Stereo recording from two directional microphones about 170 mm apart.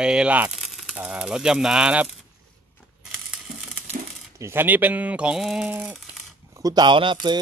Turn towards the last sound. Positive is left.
turn(degrees=-30)  # may be behind; listen again after turning